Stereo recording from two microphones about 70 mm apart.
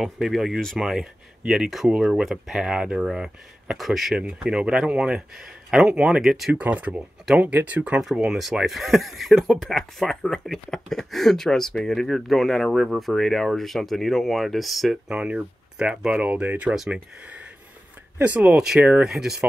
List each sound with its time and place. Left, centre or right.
0.0 s speech: centre
4.2 s speech: centre
6.5 s speech: right
8.0 s speech: centre
15.1 s speech: centre
16.7 s speech: centre
18.2 s speech: centre
19.0 s speech: centre